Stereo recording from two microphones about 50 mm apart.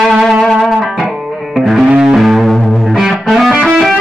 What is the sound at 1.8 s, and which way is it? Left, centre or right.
Music, centre.